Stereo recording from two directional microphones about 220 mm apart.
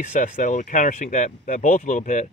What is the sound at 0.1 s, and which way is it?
Speech, 35° left (ahead or behind).